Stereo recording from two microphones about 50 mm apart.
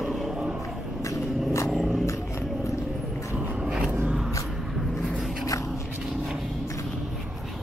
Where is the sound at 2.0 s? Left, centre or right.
Left.